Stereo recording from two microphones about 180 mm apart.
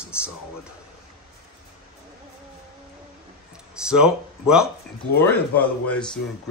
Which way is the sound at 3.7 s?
5° right (ahead or behind).